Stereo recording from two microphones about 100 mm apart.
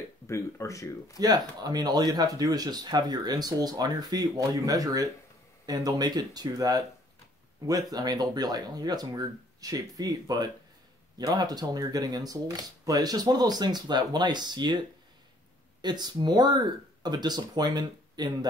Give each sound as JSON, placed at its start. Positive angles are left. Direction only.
{"t": 0.3, "sound": "speech", "side_deg": 30}
{"t": 1.2, "sound": "speech", "side_deg": -40}
{"t": 15.8, "sound": "speech", "side_deg": -45}